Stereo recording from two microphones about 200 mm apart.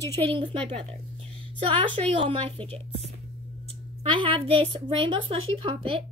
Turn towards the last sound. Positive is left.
turn(degrees=-25)  # may be behind; listen again after turning